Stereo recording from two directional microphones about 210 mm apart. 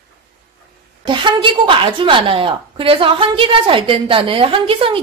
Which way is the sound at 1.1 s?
25° right (ahead or behind).